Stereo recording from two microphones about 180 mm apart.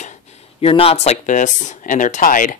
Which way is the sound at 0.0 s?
40° left (ahead or behind).